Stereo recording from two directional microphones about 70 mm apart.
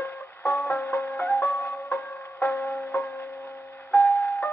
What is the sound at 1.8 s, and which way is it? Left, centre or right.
Music, left.